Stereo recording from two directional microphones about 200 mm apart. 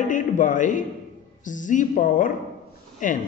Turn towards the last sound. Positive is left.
turn(degrees=40)  # may be behind; listen again after turning